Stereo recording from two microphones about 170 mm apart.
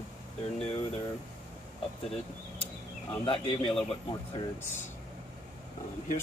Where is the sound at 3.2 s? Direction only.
30° left (ahead or behind).